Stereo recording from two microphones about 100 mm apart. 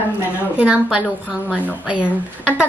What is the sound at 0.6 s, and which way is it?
Speech, 10° right (ahead or behind).